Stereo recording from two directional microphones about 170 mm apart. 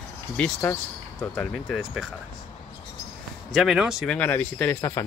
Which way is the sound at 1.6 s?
5° right (ahead or behind).